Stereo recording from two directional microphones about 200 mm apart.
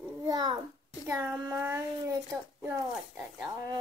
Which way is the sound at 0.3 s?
20° right (ahead or behind).